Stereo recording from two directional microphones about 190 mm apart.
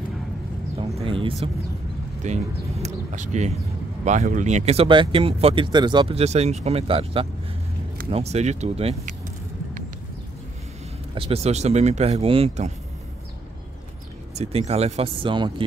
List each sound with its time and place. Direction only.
1.0 s speech: 30° right (ahead or behind)
11.1 s speech: 30° right (ahead or behind)
14.3 s speech: 35° right (ahead or behind)